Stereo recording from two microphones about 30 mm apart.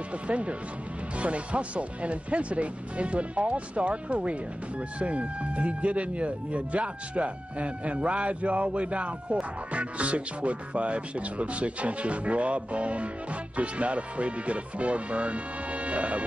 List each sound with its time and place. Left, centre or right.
0.3 s speech: right